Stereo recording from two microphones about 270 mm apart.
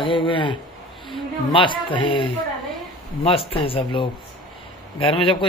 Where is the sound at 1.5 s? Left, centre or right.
Centre.